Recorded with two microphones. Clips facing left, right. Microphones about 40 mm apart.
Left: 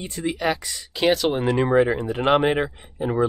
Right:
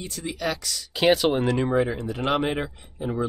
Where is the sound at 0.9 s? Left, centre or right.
Centre.